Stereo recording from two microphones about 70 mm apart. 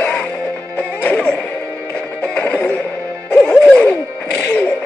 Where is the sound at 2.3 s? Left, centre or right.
Centre.